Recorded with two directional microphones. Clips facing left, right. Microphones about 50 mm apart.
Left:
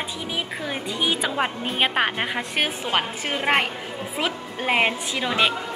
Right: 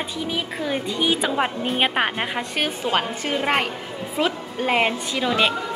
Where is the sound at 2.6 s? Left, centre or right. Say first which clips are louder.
Right 1 dB; left.